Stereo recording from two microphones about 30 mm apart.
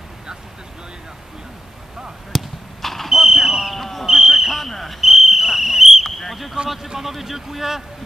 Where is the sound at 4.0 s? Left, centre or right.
Centre.